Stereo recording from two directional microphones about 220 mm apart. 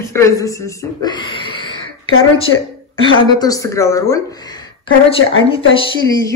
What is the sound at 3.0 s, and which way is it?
A woman's voice, 15° left (ahead or behind).